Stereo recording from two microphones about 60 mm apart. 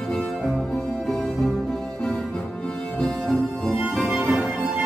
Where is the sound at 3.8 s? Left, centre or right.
Centre.